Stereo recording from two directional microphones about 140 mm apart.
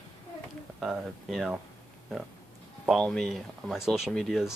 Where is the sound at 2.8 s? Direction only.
5° left (ahead or behind).